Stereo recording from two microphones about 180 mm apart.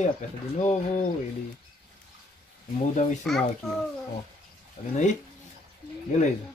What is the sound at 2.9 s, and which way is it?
Speech, 40° left (ahead or behind).